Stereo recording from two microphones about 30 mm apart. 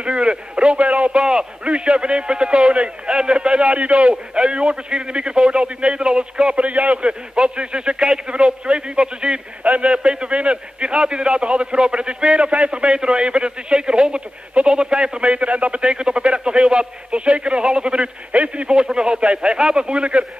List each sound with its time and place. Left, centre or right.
0.0 s a man's voice: right
0.7 s a man's voice: right
1.1 s a man's voice: right
3.6 s a man's voice: right
4.1 s a man's voice: right
9.6 s a man's voice: right
9.9 s a man's voice: right
15.8 s a man's voice: right
18.3 s a man's voice: right
18.7 s a man's voice: right